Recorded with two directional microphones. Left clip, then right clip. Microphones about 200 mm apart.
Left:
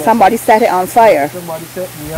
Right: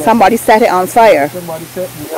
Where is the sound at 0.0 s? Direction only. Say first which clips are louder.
Right 1 dB; 5° right (ahead or behind).